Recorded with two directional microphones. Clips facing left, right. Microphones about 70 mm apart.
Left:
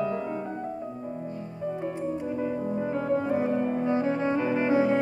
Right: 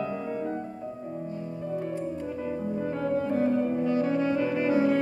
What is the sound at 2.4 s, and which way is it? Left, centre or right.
Music, centre.